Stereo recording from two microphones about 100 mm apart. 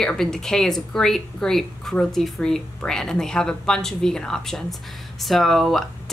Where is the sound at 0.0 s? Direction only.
5° left (ahead or behind).